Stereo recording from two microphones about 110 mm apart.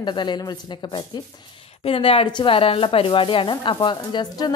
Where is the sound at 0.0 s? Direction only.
45° left (ahead or behind).